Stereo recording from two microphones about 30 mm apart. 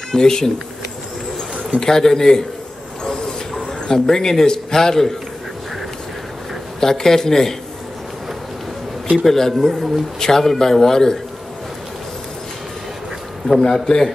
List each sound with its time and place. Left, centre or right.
0.1 s a man's voice: left
1.8 s a man's voice: centre
3.0 s a sound: centre
4.1 s a man's voice: centre
6.8 s a man's voice: centre
9.2 s a man's voice: centre
13.5 s a man's voice: centre